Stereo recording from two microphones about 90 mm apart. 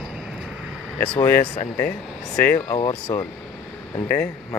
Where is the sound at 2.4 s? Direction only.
20° left (ahead or behind).